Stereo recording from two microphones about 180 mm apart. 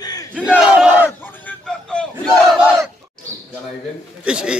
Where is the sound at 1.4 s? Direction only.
5° left (ahead or behind).